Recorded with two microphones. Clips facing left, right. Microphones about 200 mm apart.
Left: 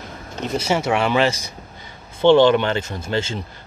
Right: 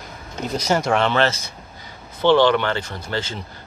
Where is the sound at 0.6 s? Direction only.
5° left (ahead or behind).